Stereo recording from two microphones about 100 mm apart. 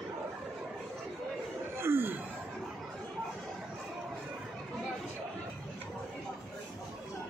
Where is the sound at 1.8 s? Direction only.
25° right (ahead or behind).